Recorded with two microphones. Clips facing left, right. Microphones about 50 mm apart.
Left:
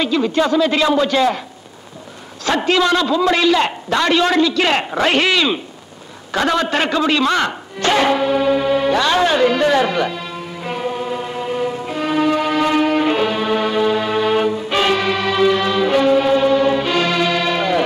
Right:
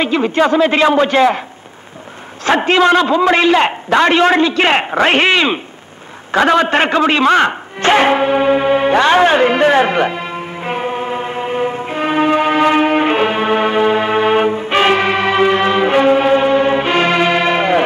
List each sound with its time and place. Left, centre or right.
0.0 s a man's voice: right
2.4 s a man's voice: right
6.3 s music: right